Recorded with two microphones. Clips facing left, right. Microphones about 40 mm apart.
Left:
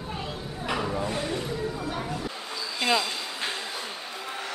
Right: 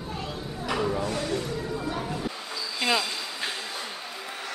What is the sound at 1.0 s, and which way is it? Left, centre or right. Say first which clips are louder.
Snake: right 1 dB; left.